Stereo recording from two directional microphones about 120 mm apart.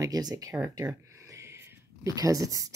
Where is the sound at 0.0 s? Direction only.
30° right (ahead or behind).